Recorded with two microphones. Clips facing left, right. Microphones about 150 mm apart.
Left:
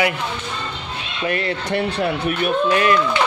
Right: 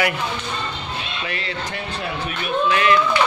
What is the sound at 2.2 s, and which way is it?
Speech, 45° left (ahead or behind).